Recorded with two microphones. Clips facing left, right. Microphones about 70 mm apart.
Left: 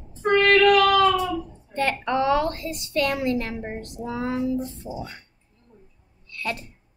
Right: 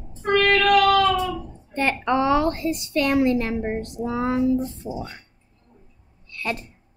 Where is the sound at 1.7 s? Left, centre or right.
Right.